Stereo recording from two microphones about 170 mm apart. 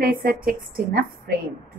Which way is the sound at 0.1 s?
55° right (ahead or behind).